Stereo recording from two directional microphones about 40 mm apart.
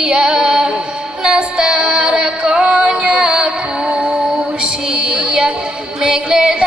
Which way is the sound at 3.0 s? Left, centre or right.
Right.